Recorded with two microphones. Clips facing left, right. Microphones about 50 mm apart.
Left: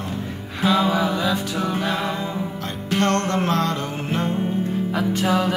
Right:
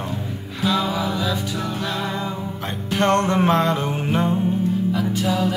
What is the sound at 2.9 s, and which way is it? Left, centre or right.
Music, right.